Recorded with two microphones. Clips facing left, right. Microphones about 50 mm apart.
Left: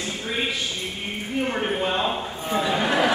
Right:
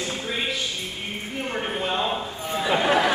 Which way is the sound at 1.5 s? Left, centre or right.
Centre.